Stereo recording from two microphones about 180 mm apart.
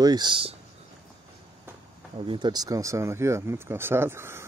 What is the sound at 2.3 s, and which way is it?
Speech, 25° right (ahead or behind).